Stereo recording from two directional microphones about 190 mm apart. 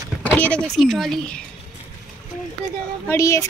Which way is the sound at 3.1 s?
15° left (ahead or behind).